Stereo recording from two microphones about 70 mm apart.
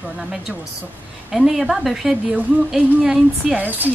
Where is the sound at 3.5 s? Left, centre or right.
Right.